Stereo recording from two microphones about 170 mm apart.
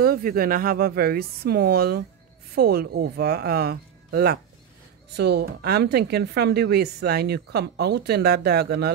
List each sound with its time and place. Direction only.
0.0 s speech: 60° right (ahead or behind)